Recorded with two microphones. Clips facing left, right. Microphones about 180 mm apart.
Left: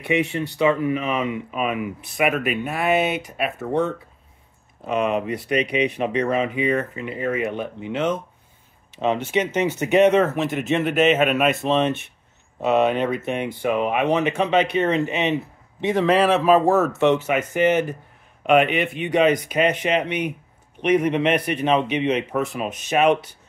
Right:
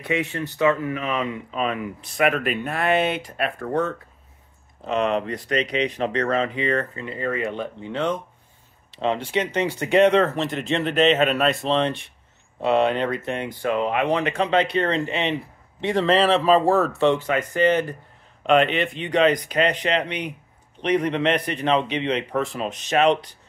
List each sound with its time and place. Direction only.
0.0 s a man's voice: 15° left (ahead or behind)
9.3 s a man's voice: 10° left (ahead or behind)
16.9 s a man's voice: 20° left (ahead or behind)
22.3 s a man's voice: centre (ahead or behind)